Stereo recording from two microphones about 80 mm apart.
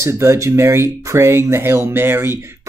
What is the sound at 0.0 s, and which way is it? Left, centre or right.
Speech, right.